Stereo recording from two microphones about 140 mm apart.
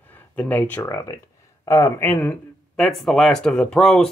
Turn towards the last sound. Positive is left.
turn(degrees=5)  # may be behind; listen again after turning